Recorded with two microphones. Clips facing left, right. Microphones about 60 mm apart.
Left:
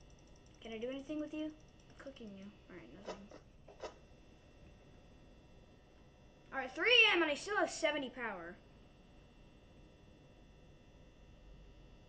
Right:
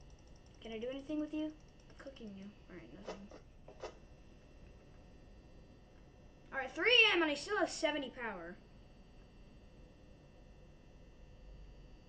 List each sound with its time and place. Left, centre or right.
0.6 s a woman's voice: centre
6.5 s a woman's voice: centre